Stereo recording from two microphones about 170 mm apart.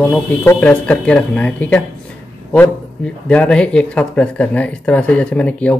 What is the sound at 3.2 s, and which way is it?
Speech, 5° left (ahead or behind).